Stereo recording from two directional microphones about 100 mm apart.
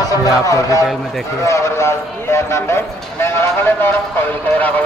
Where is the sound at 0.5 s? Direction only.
35° left (ahead or behind).